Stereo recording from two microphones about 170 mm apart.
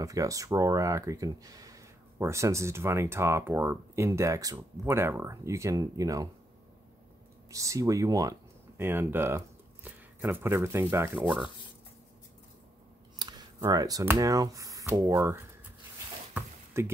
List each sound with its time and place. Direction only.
0.0 s speech: 20° right (ahead or behind)
7.5 s speech: 20° right (ahead or behind)
13.2 s speech: 20° right (ahead or behind)
16.3 s a sound: 15° right (ahead or behind)